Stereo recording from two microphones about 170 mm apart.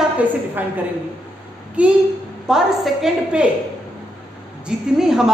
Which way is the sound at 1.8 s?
10° right (ahead or behind).